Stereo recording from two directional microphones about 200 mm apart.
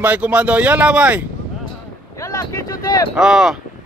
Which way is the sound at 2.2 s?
15° left (ahead or behind).